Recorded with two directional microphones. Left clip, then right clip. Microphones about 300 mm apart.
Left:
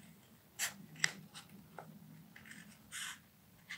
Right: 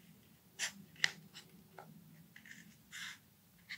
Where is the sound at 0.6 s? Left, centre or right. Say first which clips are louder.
Right 1 dB; centre.